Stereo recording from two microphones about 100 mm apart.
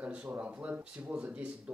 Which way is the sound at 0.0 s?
15° right (ahead or behind).